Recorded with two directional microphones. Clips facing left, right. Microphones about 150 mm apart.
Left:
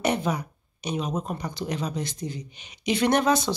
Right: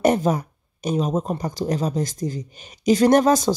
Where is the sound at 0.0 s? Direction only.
45° right (ahead or behind).